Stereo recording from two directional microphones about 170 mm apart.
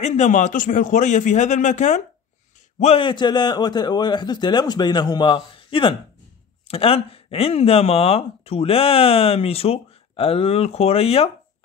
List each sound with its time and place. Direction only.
0.0 s a man's voice: 40° left (ahead or behind)
2.8 s a man's voice: 35° left (ahead or behind)